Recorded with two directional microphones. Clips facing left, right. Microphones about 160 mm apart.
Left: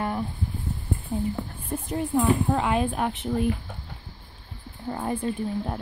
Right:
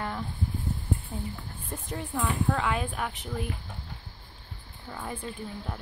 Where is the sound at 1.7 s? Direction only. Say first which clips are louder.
Left 9 dB; 20° left (ahead or behind).